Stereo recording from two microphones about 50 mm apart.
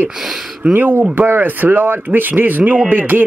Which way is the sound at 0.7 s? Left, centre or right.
Right.